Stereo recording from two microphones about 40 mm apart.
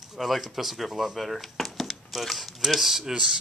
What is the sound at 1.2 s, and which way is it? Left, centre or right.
Speech, centre.